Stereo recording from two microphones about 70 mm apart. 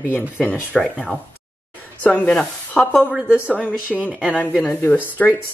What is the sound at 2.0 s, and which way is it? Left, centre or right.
Speech, left.